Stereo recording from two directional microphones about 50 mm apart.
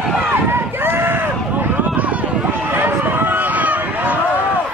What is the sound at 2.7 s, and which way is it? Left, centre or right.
Run, right.